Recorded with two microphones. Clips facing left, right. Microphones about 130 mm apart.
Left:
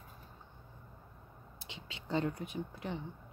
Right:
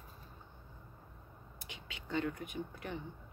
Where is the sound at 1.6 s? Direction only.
30° left (ahead or behind).